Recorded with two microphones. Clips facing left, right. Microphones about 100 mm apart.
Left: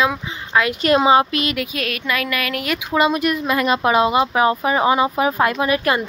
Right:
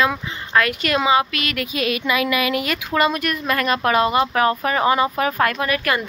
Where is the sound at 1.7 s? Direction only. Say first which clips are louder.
Right 2 dB; 5° right (ahead or behind).